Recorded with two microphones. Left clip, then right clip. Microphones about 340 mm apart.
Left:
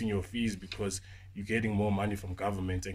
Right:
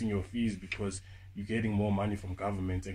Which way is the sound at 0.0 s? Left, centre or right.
Left.